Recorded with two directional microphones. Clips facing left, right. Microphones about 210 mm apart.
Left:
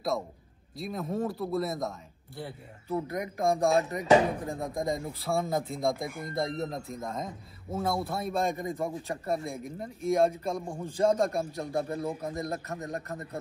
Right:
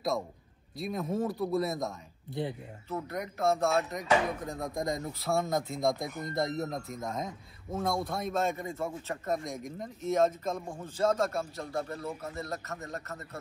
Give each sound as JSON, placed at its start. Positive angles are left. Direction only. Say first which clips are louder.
{"t": 0.7, "sound": "speech", "louder": "even", "side_deg": 0}
{"t": 2.4, "sound": "speech", "louder": "right 6 dB", "side_deg": -20}
{"t": 2.9, "sound": "speech", "louder": "left 4 dB", "side_deg": 15}
{"t": 4.0, "sound": "speech", "louder": "left 5 dB", "side_deg": 35}
{"t": 4.6, "sound": "speech", "louder": "left 2 dB", "side_deg": 0}